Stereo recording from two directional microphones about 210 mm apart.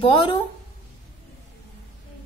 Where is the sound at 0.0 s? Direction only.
25° left (ahead or behind).